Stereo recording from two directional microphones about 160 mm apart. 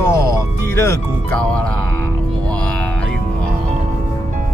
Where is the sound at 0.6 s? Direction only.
15° left (ahead or behind).